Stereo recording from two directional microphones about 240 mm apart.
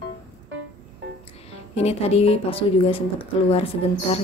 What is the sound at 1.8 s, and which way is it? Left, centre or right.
Speech, left.